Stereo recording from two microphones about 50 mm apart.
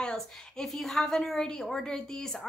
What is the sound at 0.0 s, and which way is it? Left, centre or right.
A woman's voice, centre.